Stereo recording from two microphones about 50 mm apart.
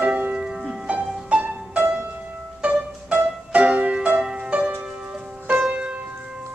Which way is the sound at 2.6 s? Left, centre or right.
Right.